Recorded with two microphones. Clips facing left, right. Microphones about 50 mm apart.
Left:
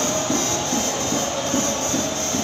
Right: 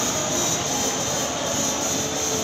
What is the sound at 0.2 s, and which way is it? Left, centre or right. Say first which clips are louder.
Music: left 3 dB; left.